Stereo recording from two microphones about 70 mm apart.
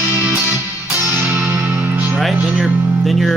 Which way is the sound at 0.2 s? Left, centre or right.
Right.